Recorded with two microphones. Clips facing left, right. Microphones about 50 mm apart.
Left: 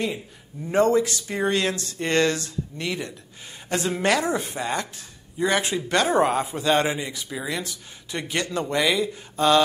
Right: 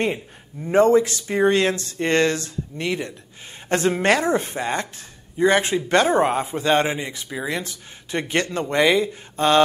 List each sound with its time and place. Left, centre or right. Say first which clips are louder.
0.7 s a woman's voice: right 4 dB; right